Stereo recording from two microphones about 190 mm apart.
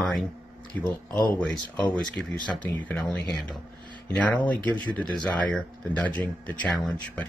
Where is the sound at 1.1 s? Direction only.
20° right (ahead or behind).